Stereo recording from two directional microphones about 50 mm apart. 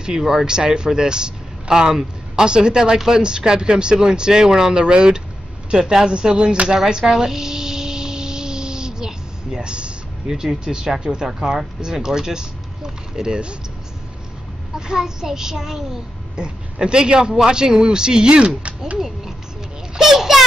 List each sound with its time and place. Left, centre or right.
0.0 s speech: centre
14.8 s speech: centre
20.0 s child singing: centre